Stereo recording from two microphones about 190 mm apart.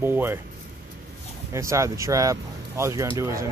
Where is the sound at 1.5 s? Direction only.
15° right (ahead or behind).